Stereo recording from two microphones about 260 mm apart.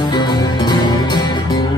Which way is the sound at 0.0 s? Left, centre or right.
Centre.